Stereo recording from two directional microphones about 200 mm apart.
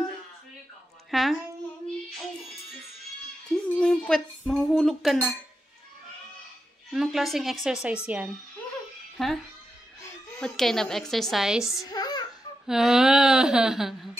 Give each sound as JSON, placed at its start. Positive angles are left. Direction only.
{"t": 1.1, "sound": "a child's voice", "side_deg": 0}
{"t": 3.4, "sound": "a sound", "side_deg": 5}
{"t": 6.9, "sound": "speech", "side_deg": 0}
{"t": 9.1, "sound": "speech", "side_deg": 0}
{"t": 10.4, "sound": "speech", "side_deg": 0}
{"t": 11.8, "sound": "a sound", "side_deg": 20}
{"t": 12.6, "sound": "speech", "side_deg": 0}